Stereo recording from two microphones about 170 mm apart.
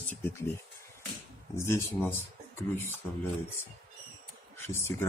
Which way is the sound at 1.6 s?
15° left (ahead or behind).